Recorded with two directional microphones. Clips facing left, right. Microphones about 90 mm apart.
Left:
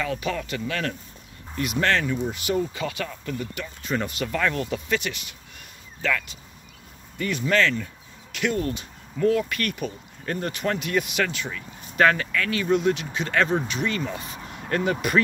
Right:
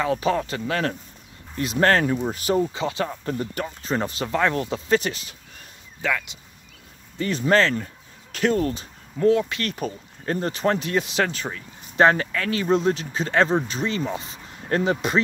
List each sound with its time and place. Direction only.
0.0 s speech: 35° right (ahead or behind)
6.0 s speech: 15° right (ahead or behind)
7.2 s speech: 35° right (ahead or behind)